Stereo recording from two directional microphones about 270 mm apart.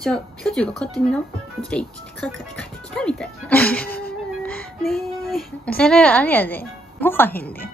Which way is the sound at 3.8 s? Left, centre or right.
Left.